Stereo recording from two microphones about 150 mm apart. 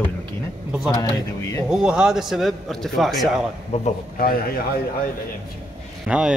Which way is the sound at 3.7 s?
50° left (ahead or behind).